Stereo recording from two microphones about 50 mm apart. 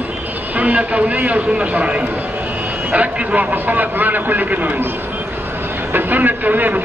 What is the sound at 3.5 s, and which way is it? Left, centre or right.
Speech, right.